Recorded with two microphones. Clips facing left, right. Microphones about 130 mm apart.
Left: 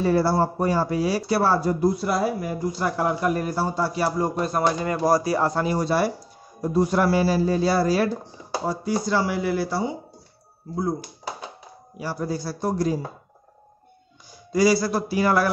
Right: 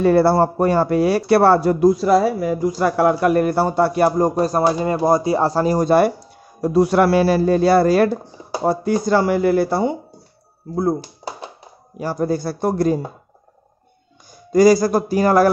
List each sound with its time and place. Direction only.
0.0 s speech: 60° right (ahead or behind)
12.0 s speech: 45° right (ahead or behind)
14.5 s speech: 45° right (ahead or behind)